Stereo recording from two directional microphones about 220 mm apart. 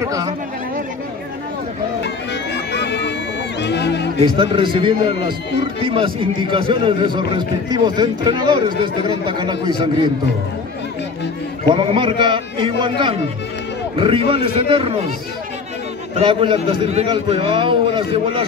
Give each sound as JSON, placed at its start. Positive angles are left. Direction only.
{"t": 0.0, "sound": "speech", "side_deg": -15}
{"t": 2.5, "sound": "music", "side_deg": 50}
{"t": 3.6, "sound": "a sound", "side_deg": 50}
{"t": 4.2, "sound": "a man's voice", "side_deg": -25}
{"t": 11.6, "sound": "a man's voice", "side_deg": -20}
{"t": 16.2, "sound": "a man's voice", "side_deg": -25}